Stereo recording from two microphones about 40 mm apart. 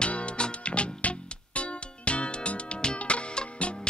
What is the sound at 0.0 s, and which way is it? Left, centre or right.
Music, left.